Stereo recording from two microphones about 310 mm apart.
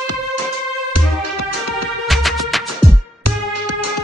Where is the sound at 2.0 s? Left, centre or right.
Centre.